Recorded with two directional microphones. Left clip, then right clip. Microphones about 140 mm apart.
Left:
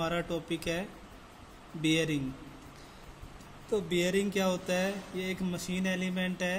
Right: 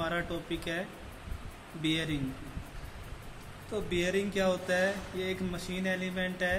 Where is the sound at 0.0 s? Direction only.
45° left (ahead or behind).